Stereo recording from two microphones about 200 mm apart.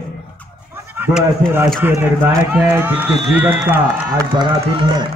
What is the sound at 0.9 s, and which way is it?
Speech, 10° right (ahead or behind).